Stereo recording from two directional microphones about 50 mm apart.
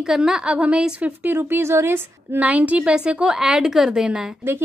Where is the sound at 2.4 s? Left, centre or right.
Right.